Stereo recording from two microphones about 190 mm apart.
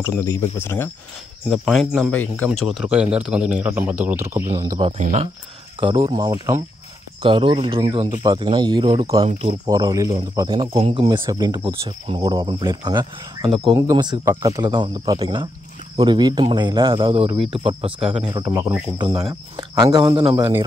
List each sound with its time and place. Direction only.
0.0 s speech: 10° left (ahead or behind)
1.5 s speech: centre (ahead or behind)
2.6 s speech: 5° right (ahead or behind); by 4.8 s 20° right (ahead or behind)
4.8 s speech: 35° right (ahead or behind)
9.7 s speech: 20° right (ahead or behind)